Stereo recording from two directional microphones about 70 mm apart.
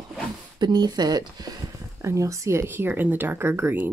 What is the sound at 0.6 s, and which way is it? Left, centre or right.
Speech, right.